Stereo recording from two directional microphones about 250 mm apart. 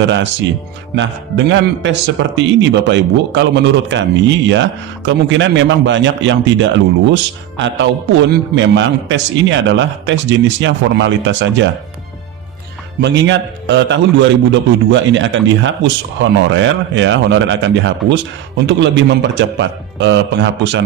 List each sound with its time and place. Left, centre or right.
0.0 s a man's voice: right
13.0 s a man's voice: right